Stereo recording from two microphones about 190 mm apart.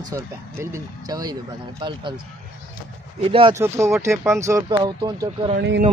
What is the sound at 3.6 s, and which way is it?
Speech, 15° right (ahead or behind).